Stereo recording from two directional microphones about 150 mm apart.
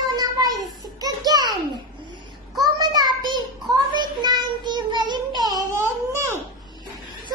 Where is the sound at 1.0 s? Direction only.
25° right (ahead or behind).